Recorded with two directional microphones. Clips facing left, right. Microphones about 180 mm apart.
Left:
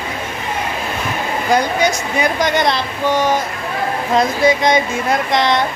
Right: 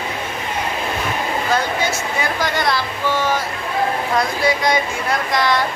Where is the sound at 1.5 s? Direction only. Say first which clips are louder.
Left 7 dB; 15° left (ahead or behind).